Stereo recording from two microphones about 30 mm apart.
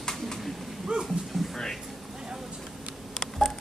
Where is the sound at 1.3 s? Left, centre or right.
Centre.